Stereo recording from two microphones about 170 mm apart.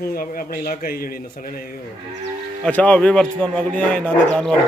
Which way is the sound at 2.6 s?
10° left (ahead or behind).